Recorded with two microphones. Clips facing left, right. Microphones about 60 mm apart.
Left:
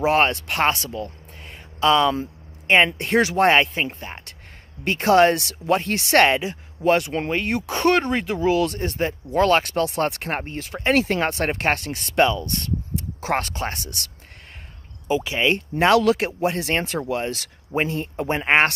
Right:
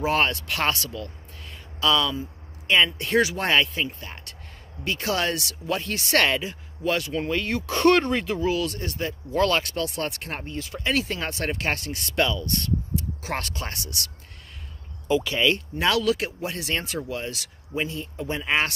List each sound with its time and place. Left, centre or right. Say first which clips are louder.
0.0 s speech: left 4 dB; left
7.7 s speech: right 1 dB; centre
8.5 s speech: left 5 dB; left
15.0 s speech: left 1 dB; left